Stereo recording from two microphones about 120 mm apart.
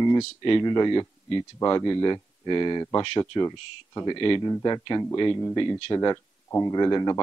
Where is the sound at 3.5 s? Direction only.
35° left (ahead or behind).